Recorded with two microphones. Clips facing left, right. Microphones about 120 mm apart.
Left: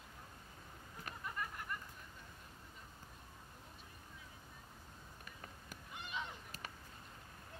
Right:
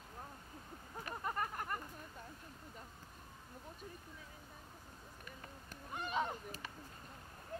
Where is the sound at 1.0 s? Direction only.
45° right (ahead or behind).